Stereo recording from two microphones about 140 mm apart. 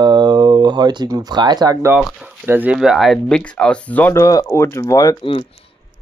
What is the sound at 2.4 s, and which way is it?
Speech, 15° right (ahead or behind).